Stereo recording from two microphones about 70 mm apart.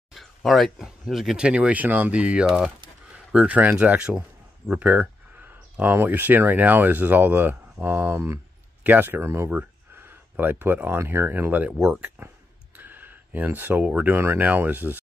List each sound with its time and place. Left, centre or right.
0.1 s speech: centre
1.4 s speech: centre
3.1 s a sound: centre
3.5 s speech: right